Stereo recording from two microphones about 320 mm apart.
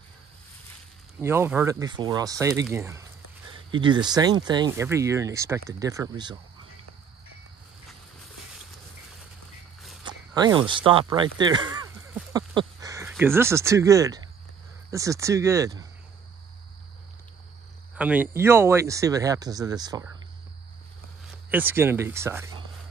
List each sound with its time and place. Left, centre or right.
1.2 s speech: centre
10.0 s zipper: centre
10.7 s speech: centre
11.3 s a sound: centre
13.1 s speech: centre
17.9 s speech: centre
21.5 s speech: centre